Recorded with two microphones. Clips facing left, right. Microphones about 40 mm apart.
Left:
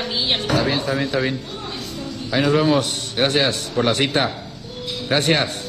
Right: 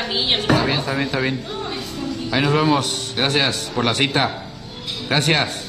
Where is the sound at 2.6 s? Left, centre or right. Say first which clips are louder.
Even; right.